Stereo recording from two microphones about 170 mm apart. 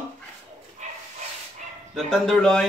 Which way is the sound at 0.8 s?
45° right (ahead or behind).